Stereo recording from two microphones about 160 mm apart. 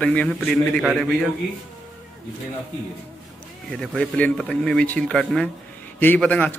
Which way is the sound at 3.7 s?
5° left (ahead or behind).